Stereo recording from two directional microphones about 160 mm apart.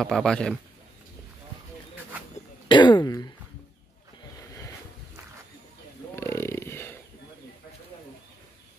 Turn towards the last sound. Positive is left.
turn(degrees=15)  # may be behind; listen again after turning